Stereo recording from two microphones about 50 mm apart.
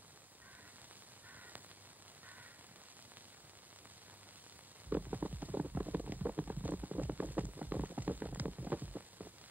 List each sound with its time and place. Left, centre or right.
4.8 s rain: right